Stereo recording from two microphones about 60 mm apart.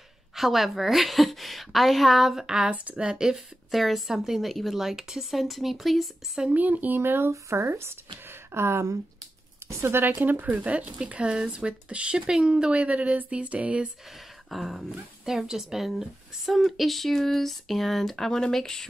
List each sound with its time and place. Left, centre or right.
0.4 s speech: centre
6.5 s speech: right
7.0 s a woman's voice: right
14.5 s speech: centre